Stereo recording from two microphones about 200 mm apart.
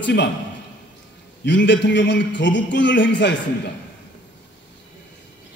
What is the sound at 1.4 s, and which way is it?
A man's voice, 65° left (ahead or behind).